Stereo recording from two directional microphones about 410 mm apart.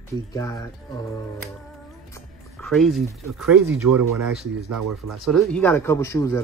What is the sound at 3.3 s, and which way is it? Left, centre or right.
Speech, centre.